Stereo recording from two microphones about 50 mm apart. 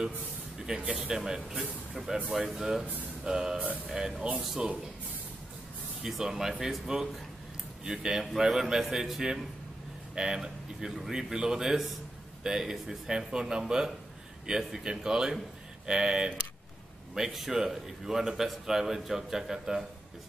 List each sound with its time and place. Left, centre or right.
0.7 s speech: centre
6.0 s speech: centre